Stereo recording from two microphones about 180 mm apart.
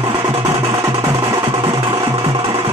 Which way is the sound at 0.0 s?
30° right (ahead or behind).